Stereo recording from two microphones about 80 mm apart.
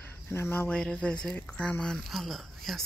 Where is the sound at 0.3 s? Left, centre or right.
Left.